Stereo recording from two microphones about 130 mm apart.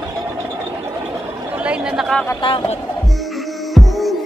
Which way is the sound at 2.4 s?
45° left (ahead or behind).